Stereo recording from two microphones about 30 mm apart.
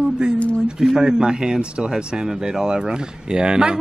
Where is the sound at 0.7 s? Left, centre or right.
Right.